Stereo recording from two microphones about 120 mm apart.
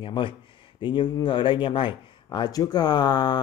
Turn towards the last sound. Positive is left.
turn(degrees=35)  # may be behind; listen again after turning